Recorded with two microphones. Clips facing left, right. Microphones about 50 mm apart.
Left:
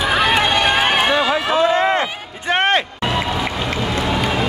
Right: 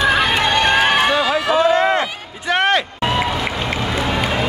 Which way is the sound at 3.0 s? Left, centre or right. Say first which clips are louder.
Right 1 dB; centre.